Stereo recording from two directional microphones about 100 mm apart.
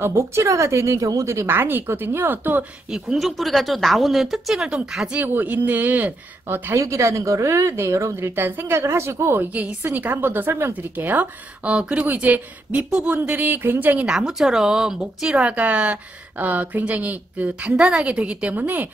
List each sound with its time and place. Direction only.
0.0 s speech: 25° right (ahead or behind)
2.9 s speech: 5° right (ahead or behind)